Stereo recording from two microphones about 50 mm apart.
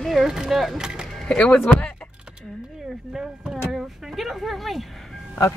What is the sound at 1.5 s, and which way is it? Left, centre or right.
Speech, left.